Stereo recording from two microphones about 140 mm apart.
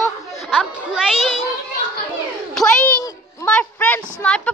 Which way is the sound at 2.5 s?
5° left (ahead or behind).